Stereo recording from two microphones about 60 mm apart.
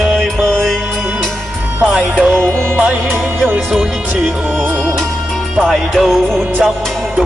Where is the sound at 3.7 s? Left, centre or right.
Centre.